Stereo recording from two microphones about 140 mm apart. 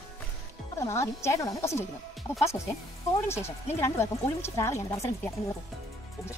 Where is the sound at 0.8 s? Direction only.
20° left (ahead or behind).